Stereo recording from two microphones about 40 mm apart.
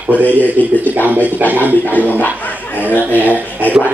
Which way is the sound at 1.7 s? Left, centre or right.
Left.